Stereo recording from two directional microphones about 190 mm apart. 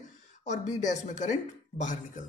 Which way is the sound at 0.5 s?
40° left (ahead or behind).